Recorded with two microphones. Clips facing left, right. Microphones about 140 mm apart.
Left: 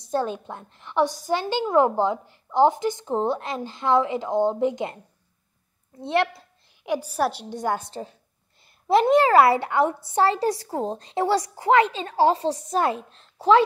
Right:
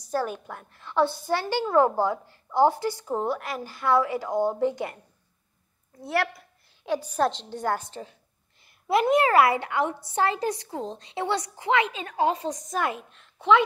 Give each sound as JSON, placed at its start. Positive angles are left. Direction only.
{"t": 0.0, "sound": "a woman's voice", "side_deg": 20}
{"t": 6.8, "sound": "a woman's voice", "side_deg": 10}
{"t": 8.8, "sound": "a woman's voice", "side_deg": 30}